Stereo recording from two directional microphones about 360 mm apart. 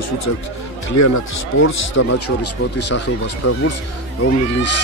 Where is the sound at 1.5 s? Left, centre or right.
Left.